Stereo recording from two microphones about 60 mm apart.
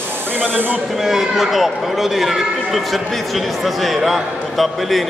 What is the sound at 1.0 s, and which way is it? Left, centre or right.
A man's voice, centre.